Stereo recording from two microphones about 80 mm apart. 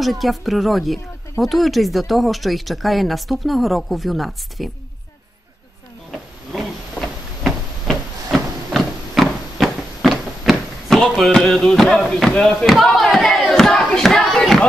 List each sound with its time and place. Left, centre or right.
0.0 s speech: centre
7.4 s a sound: centre
12.8 s battle cry: centre